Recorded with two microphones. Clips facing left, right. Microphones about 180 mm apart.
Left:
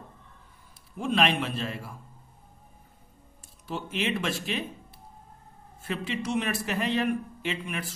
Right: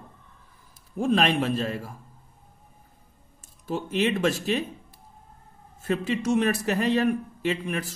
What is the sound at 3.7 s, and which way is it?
Speech, 40° right (ahead or behind).